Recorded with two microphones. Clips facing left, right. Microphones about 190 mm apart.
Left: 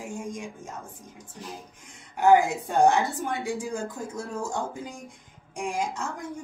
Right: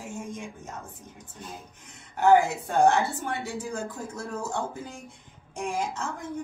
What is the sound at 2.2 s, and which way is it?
A woman's voice, 15° left (ahead or behind).